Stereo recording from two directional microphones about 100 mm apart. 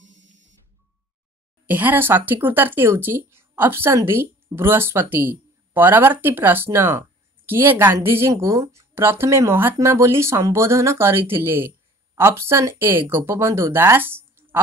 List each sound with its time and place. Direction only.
1.7 s speech: 20° right (ahead or behind)